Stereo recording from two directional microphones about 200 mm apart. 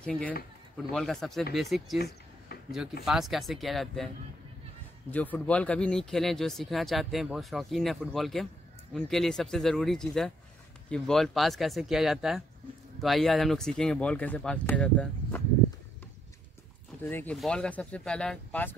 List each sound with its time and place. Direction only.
0.0 s speech: 5° left (ahead or behind)
2.0 s a sound: 50° left (ahead or behind)
3.1 s speech: centre (ahead or behind)
5.1 s speech: 10° left (ahead or behind)
17.0 s speech: 10° left (ahead or behind)